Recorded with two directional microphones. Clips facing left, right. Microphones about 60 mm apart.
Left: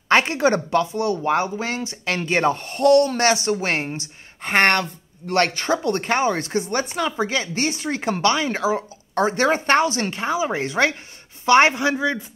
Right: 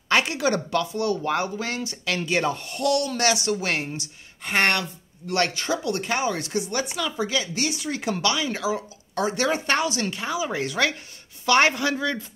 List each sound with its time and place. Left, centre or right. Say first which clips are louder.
0.1 s a man's voice: left 5 dB; left